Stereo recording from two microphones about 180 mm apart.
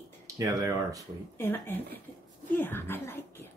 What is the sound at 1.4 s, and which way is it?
A woman's voice, 10° left (ahead or behind).